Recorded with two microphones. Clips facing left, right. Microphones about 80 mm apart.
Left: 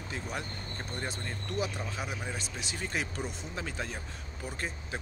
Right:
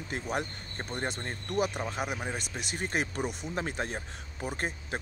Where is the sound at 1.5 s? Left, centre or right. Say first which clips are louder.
Right 5 dB; right.